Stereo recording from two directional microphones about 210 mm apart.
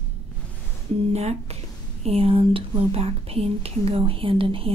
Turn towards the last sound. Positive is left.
turn(degrees=-25)  # may be behind; listen again after turning